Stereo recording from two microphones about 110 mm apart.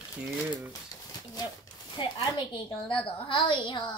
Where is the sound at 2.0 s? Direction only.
50° left (ahead or behind).